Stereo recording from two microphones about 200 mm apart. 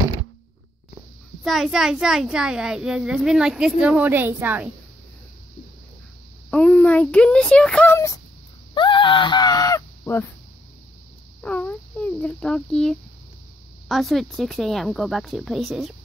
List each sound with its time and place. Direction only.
1.4 s a child's voice: centre (ahead or behind)
6.5 s speech: 5° left (ahead or behind)
11.4 s a sound: 5° left (ahead or behind)
13.8 s a child's voice: centre (ahead or behind)